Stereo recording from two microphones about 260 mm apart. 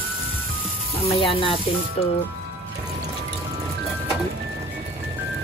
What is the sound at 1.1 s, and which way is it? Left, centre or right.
Speech, left.